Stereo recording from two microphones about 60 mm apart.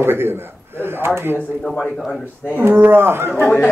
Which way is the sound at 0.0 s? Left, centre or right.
Right.